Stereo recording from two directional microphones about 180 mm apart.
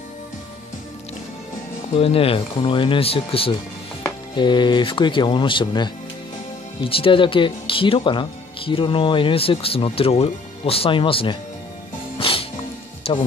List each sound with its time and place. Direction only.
2.0 s speech: 30° left (ahead or behind)
12.2 s music: 30° left (ahead or behind)
13.0 s speech: 30° left (ahead or behind)